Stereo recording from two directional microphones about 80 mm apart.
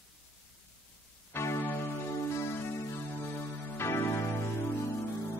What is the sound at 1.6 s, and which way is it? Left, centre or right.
Music, left.